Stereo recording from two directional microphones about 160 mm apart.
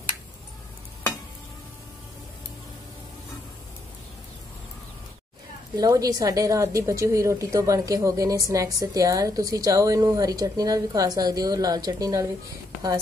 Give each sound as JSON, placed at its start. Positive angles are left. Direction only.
{"t": 5.8, "sound": "a woman's voice", "side_deg": -25}